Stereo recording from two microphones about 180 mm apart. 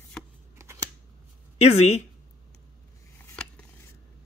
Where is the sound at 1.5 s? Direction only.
35° left (ahead or behind).